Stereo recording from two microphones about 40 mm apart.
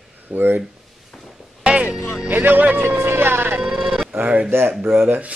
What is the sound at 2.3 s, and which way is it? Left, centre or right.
Speech, right.